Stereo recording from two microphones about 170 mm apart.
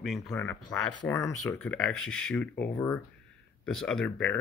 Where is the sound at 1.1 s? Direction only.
15° left (ahead or behind).